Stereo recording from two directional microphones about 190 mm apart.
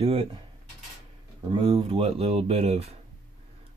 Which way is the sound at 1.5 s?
30° right (ahead or behind).